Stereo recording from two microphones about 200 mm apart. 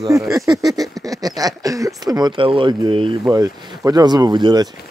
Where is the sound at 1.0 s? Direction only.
20° right (ahead or behind).